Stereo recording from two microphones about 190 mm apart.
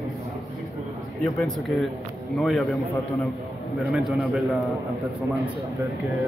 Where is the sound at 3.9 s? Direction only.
Centre (ahead or behind).